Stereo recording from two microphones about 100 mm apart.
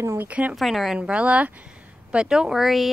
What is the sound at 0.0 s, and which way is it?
Speech, 25° right (ahead or behind).